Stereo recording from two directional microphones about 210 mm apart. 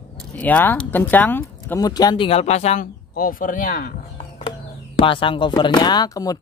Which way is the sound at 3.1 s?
45° left (ahead or behind).